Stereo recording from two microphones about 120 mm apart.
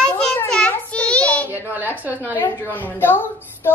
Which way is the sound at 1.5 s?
15° right (ahead or behind).